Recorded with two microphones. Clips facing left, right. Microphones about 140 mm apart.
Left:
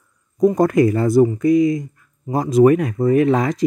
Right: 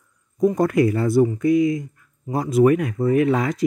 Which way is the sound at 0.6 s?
40° left (ahead or behind).